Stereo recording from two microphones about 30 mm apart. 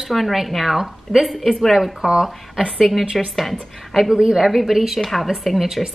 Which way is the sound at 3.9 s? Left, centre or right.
Centre.